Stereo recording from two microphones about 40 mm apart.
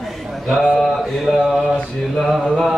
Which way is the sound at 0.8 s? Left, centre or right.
Centre.